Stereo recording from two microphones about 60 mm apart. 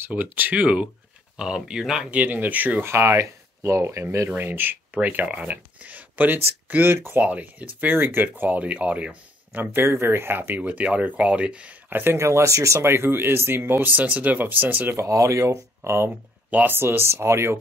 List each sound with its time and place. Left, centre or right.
0.1 s speech: right; by 2.0 s centre
2.0 s speech: right
2.8 s speech: right
4.3 s speech: right
7.2 s speech: right
9.6 s speech: right
11.9 s speech: right
12.2 s speech: right
12.7 s speech: right
15.0 s speech: right
16.4 s speech: right
16.7 s speech: right